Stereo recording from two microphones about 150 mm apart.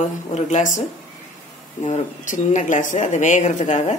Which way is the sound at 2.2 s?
55° left (ahead or behind).